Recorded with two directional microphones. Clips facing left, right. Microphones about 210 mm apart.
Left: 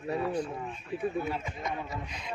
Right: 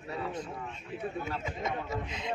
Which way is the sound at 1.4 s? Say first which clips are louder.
Right 1 dB; 25° right (ahead or behind).